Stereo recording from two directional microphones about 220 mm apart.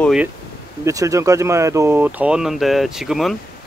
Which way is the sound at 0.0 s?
5° right (ahead or behind).